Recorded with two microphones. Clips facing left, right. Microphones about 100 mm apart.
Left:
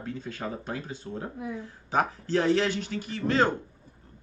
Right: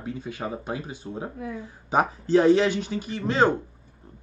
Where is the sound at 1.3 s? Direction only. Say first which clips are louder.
Right 1 dB; 20° left (ahead or behind).